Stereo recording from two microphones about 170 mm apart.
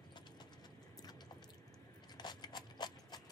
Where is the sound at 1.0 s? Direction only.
25° left (ahead or behind).